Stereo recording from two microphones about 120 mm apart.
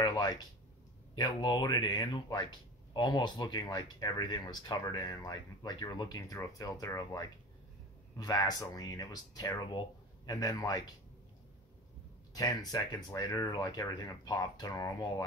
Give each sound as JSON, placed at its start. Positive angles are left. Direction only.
{"t": 0.0, "sound": "speech", "side_deg": 35}
{"t": 13.1, "sound": "speech", "side_deg": 30}